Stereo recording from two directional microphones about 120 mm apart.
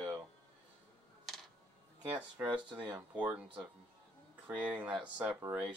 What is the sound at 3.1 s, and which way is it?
Speech, 10° right (ahead or behind).